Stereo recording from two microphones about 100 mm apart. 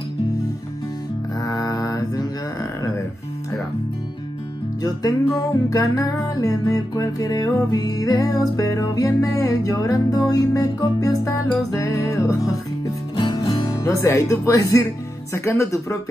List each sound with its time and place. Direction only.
1.4 s mantra: 40° left (ahead or behind)
5.7 s music: 35° left (ahead or behind)
13.1 s music: 50° left (ahead or behind)
13.7 s music: 30° left (ahead or behind)
15.3 s speech: 30° left (ahead or behind)